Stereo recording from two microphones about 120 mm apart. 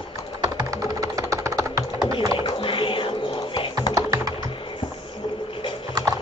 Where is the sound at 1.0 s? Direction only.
30° right (ahead or behind).